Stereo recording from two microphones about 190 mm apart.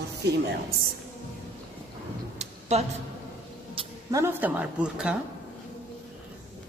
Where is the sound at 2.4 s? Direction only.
35° right (ahead or behind).